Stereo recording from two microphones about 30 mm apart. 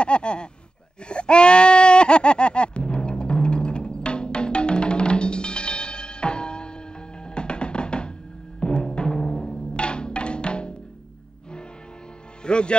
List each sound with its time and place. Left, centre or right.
0.0 s speech: left
1.0 s a sound: left
7.2 s music: left
12.4 s music: left